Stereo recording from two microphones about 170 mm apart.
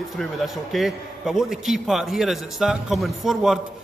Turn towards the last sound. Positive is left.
turn(degrees=0)  # may be behind; listen again after turning